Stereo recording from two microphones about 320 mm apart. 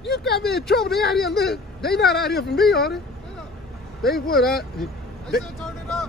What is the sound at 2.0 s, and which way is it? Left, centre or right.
Speech, left.